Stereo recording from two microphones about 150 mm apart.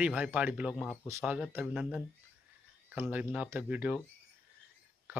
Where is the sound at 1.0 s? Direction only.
15° right (ahead or behind).